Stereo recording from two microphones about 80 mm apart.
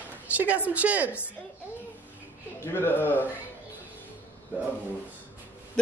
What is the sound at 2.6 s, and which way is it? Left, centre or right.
Speech, left.